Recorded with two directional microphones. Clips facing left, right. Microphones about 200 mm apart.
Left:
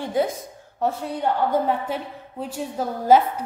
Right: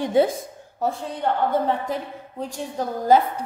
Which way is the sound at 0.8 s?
Centre (ahead or behind).